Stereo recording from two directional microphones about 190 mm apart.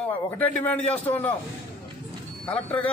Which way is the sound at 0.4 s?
10° left (ahead or behind).